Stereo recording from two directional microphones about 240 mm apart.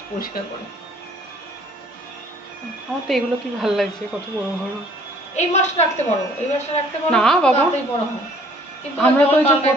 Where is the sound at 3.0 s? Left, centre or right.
Centre.